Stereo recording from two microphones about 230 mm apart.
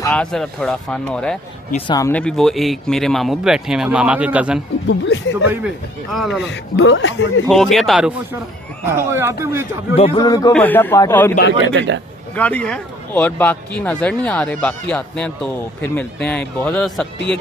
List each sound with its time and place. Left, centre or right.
0.0 s speech: centre
4.8 s speech: left
5.5 s speech: centre
6.5 s speech: left
7.4 s speech: centre
9.9 s speech: left
11.6 s a man's voice: right
12.4 s speech: centre